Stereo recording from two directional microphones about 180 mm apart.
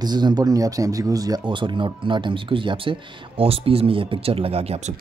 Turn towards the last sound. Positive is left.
turn(degrees=-35)  # may be behind; listen again after turning